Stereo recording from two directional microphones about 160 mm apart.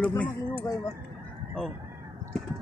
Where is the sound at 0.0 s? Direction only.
10° left (ahead or behind).